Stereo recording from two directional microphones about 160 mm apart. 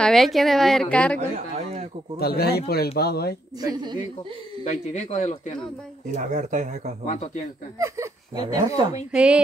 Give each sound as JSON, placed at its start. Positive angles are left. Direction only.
{"t": 0.0, "sound": "a woman's voice", "side_deg": 0}
{"t": 2.1, "sound": "speech", "side_deg": 75}
{"t": 3.6, "sound": "a woman's voice", "side_deg": -25}
{"t": 4.6, "sound": "speech", "side_deg": 45}
{"t": 6.1, "sound": "speech", "side_deg": -50}
{"t": 7.1, "sound": "speech", "side_deg": 45}
{"t": 8.5, "sound": "a woman's voice", "side_deg": -25}
{"t": 9.1, "sound": "speech", "side_deg": -5}